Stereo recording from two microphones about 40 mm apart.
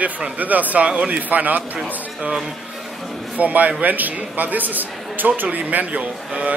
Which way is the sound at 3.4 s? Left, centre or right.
Right.